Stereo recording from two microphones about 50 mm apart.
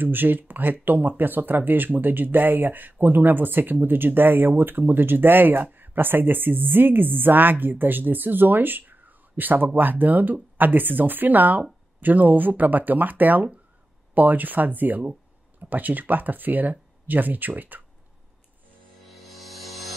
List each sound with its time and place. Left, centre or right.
0.0 s speech: right
19.0 s music: centre